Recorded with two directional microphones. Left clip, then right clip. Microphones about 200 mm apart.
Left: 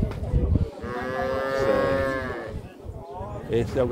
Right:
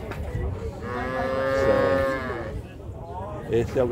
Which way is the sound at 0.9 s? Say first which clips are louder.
Even; 50° left (ahead or behind).